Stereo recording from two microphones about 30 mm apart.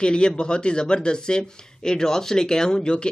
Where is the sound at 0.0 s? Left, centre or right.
Left.